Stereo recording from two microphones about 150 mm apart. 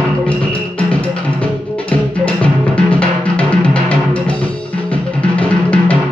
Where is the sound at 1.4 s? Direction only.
10° left (ahead or behind).